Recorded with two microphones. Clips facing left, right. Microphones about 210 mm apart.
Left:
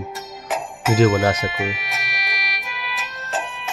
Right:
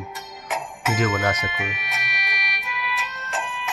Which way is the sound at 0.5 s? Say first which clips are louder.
Left 6 dB; 30° left (ahead or behind).